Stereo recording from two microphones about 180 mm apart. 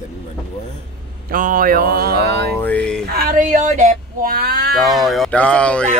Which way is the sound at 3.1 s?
55° right (ahead or behind).